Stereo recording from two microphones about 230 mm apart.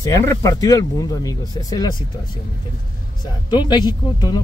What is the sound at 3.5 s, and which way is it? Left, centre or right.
Speech, centre.